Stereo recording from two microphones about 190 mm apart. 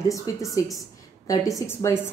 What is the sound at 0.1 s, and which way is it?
A woman's voice, 15° left (ahead or behind).